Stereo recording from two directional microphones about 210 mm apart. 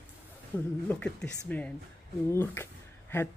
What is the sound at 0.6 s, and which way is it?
A woman's voice, 5° left (ahead or behind).